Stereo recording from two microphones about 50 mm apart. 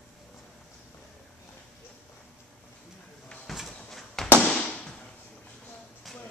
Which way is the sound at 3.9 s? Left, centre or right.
Centre.